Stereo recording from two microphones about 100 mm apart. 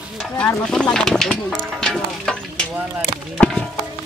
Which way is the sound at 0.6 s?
5° left (ahead or behind).